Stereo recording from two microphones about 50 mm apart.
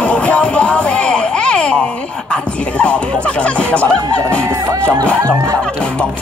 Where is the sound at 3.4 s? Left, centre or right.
Left.